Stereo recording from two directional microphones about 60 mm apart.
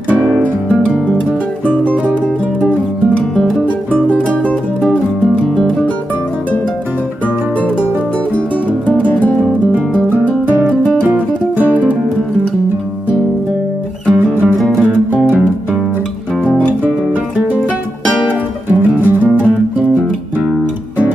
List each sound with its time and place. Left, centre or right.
3.9 s music: left
8.8 s music: left
10.2 s music: right
10.7 s music: left
11.1 s music: right
18.8 s music: right